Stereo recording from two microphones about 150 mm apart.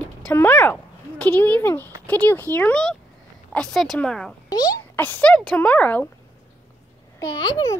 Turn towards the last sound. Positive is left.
turn(degrees=25)  # may be behind; listen again after turning